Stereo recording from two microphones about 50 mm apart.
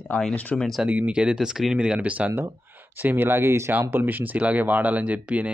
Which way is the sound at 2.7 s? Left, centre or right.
Right.